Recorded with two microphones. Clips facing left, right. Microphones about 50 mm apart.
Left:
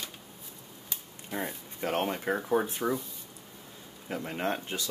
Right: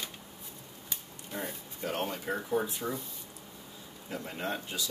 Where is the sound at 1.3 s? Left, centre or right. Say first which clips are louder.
Left 3 dB; left.